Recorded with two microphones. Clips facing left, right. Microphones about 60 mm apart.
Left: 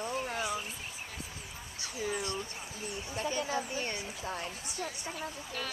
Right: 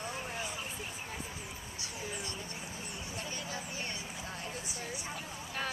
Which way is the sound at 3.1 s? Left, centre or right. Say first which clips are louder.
Left 9 dB; left.